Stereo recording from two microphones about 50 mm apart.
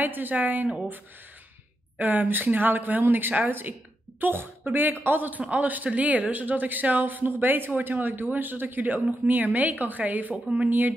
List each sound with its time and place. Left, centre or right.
0.0 s speech: right
2.0 s speech: right